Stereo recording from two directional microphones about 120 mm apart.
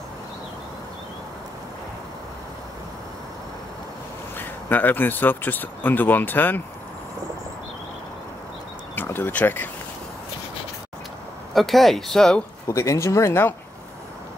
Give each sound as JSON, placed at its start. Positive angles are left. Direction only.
{"t": 4.4, "sound": "speech", "side_deg": 15}
{"t": 8.9, "sound": "speech", "side_deg": 15}
{"t": 11.5, "sound": "speech", "side_deg": 0}
{"t": 12.6, "sound": "speech", "side_deg": 25}